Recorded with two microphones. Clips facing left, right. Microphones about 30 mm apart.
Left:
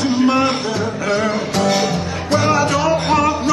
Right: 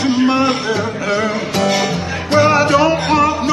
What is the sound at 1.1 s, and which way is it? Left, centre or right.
Music, centre.